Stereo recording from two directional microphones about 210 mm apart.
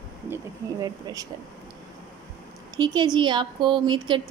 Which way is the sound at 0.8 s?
20° right (ahead or behind).